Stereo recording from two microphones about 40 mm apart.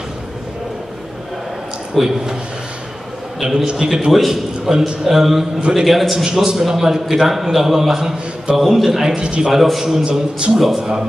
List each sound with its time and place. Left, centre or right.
2.0 s a man's voice: centre
3.3 s a man's voice: centre
4.1 s a man's voice: centre
6.2 s a man's voice: centre
8.0 s a man's voice: centre
8.5 s a man's voice: centre
9.1 s a man's voice: right
9.5 s a man's voice: centre
10.8 s a man's voice: centre